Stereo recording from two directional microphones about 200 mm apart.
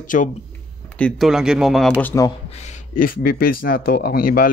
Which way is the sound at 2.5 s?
35° left (ahead or behind).